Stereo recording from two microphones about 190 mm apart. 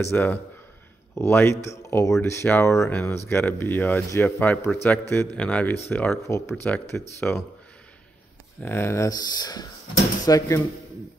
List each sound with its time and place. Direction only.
0.0 s speech: 10° left (ahead or behind)
8.6 s speech: 15° left (ahead or behind)